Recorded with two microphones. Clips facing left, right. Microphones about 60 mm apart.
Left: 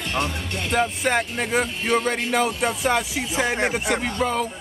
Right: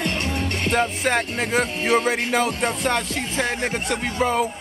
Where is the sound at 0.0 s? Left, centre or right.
Right.